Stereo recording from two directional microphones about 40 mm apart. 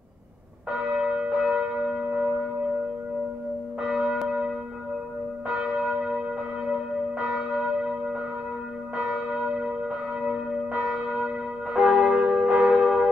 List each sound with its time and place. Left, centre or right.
0.7 s church bell: right
3.8 s church bell: right
5.5 s church bell: centre